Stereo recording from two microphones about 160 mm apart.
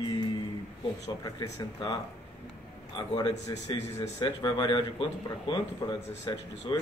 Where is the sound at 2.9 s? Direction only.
30° left (ahead or behind).